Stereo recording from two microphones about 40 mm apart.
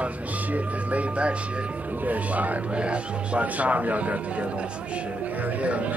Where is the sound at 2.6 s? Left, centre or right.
Right.